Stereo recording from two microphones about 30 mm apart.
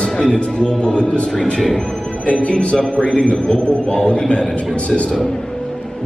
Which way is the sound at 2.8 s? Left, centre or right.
Left.